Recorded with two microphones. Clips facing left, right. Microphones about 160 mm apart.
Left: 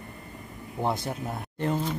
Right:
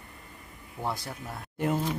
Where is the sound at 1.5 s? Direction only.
10° right (ahead or behind).